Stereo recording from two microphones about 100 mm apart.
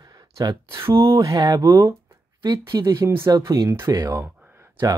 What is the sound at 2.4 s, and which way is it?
Speech, 45° right (ahead or behind).